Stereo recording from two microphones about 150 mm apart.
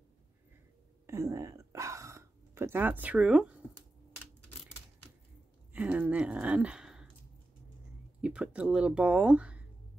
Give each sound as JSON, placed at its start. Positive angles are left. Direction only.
{"t": 1.0, "sound": "a sound", "side_deg": -20}
{"t": 5.7, "sound": "speech", "side_deg": -10}
{"t": 8.2, "sound": "speech", "side_deg": -10}